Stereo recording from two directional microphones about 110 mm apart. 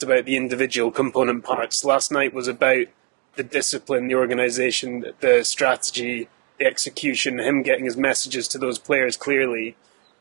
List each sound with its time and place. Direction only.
0.0 s speech: 15° right (ahead or behind)